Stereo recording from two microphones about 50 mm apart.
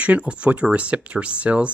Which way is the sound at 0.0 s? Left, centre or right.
Right.